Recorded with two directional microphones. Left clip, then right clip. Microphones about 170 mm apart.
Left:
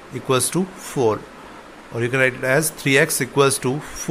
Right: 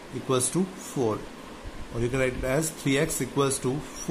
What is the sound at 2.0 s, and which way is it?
Speech, 10° left (ahead or behind).